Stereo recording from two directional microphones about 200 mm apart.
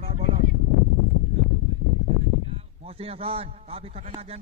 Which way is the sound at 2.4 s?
30° right (ahead or behind).